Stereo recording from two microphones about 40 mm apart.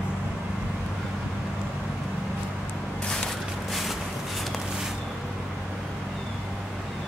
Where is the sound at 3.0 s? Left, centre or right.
Centre.